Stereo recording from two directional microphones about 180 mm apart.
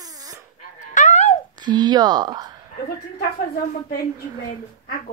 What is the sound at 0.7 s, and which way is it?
Dog, 45° left (ahead or behind).